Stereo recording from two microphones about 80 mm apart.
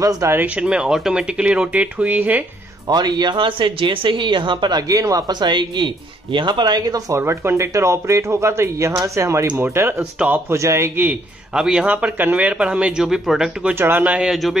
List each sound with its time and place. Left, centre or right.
0.0 s speech: right
0.6 s speech: centre
2.9 s speech: right
5.3 s speech: right
7.2 s speech: right
10.5 s speech: right
11.5 s speech: centre
11.9 s speech: right
13.7 s speech: right
14.3 s a man's voice: centre